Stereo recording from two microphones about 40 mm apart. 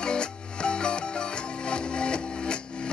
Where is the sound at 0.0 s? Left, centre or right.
Left.